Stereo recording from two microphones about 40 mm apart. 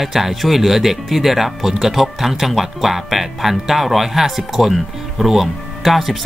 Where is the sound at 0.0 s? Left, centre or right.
Centre.